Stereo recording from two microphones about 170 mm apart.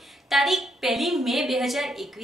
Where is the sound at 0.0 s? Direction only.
Centre (ahead or behind).